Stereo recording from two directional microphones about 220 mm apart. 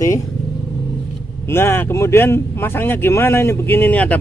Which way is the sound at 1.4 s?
10° left (ahead or behind).